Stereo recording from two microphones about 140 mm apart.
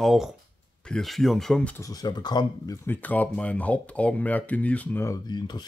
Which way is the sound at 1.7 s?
25° left (ahead or behind).